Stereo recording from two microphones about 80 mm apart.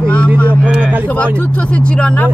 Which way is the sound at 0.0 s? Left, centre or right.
Centre.